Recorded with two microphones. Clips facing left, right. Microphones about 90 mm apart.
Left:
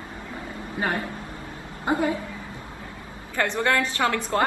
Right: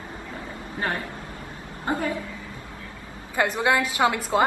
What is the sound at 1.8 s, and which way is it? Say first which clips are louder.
Speech: left 3 dB; 20° left (ahead or behind).